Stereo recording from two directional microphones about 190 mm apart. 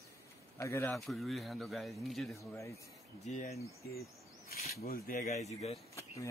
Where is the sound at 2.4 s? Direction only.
15° left (ahead or behind).